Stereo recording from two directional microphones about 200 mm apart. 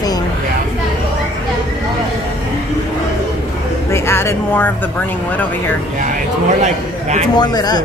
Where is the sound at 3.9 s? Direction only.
10° left (ahead or behind).